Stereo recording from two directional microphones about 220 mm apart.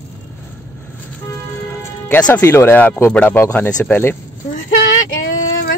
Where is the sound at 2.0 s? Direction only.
10° left (ahead or behind).